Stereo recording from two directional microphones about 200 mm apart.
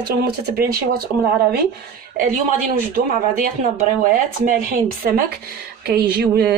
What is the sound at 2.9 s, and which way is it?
A woman's voice, 45° right (ahead or behind).